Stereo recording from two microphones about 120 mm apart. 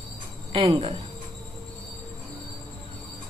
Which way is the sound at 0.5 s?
50° right (ahead or behind).